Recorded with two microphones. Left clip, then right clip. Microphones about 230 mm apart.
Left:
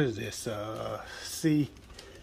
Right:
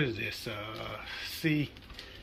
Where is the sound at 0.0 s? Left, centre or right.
Left.